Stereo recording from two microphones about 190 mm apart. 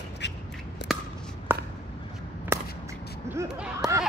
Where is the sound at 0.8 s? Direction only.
65° left (ahead or behind).